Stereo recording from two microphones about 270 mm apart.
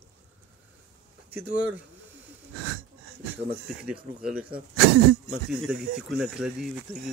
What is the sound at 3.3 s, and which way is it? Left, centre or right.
Speech, centre.